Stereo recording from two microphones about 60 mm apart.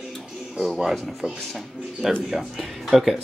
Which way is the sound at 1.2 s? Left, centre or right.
Centre.